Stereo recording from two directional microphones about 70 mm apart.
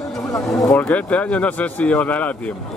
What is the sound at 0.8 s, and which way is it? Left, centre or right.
Speech, left.